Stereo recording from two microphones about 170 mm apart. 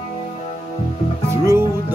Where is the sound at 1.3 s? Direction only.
15° right (ahead or behind).